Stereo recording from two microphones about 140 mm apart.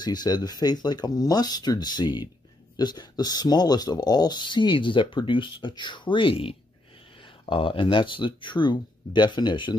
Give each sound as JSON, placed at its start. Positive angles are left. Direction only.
{"t": 0.0, "sound": "speech", "side_deg": 30}